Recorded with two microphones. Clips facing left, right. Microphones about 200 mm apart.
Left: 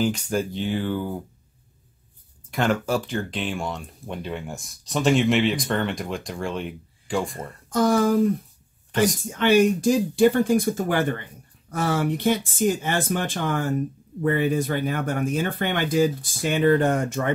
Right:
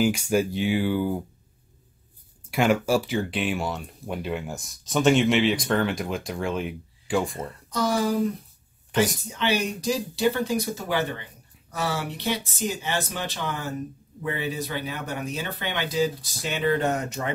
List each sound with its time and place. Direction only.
0.0 s speech: 10° right (ahead or behind)
2.5 s speech: 10° right (ahead or behind)
7.7 s speech: 50° left (ahead or behind)